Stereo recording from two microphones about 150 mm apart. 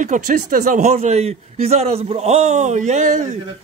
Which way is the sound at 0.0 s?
60° right (ahead or behind).